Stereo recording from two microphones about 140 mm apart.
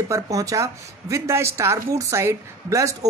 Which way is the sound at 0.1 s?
25° right (ahead or behind).